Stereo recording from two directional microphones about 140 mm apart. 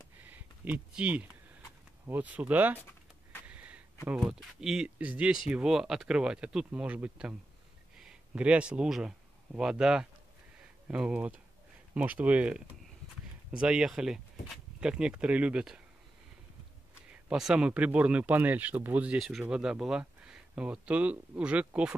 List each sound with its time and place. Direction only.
0.2 s a sound: 10° right (ahead or behind)
2.0 s speech: 10° right (ahead or behind)
17.1 s speech: 5° right (ahead or behind)